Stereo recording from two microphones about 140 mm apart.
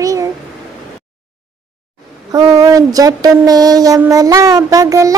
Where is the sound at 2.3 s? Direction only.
25° right (ahead or behind).